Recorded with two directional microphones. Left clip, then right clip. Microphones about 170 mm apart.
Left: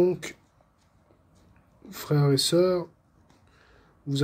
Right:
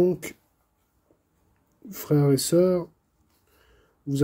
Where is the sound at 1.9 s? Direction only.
55° right (ahead or behind).